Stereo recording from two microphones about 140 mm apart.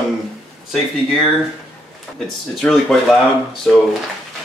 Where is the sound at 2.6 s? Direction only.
Centre (ahead or behind).